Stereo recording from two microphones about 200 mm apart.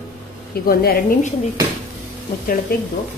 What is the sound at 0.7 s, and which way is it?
Speech, 50° left (ahead or behind).